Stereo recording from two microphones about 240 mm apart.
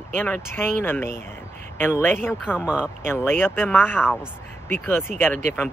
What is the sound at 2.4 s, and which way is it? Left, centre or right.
Speech, centre.